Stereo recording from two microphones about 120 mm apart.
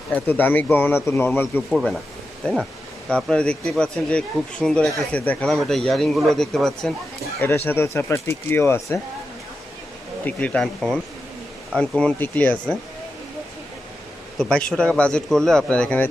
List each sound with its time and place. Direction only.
0.1 s speech: 15° left (ahead or behind)
1.7 s speech: centre (ahead or behind)
3.1 s speech: 5° left (ahead or behind)
7.3 s speech: 20° left (ahead or behind)
10.2 s speech: 10° left (ahead or behind)
14.4 s speech: 5° left (ahead or behind)